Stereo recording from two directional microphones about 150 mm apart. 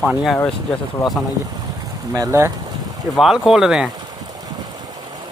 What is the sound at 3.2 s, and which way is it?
Speech, centre (ahead or behind).